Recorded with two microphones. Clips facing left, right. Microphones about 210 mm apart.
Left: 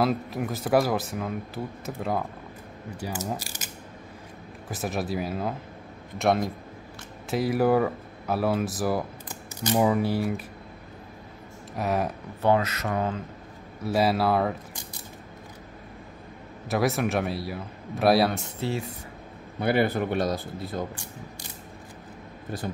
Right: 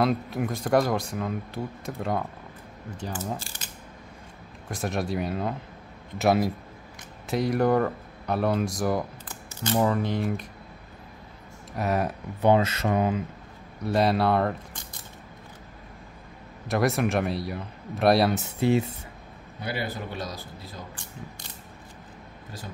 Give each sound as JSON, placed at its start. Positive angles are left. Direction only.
{"t": 0.0, "sound": "speech", "side_deg": 0}
{"t": 4.6, "sound": "speech", "side_deg": 0}
{"t": 11.7, "sound": "speech", "side_deg": 0}
{"t": 12.4, "sound": "speech", "side_deg": -20}
{"t": 13.8, "sound": "speech", "side_deg": 5}
{"t": 16.6, "sound": "speech", "side_deg": 0}
{"t": 18.6, "sound": "speech", "side_deg": -20}
{"t": 19.6, "sound": "a man's voice", "side_deg": 60}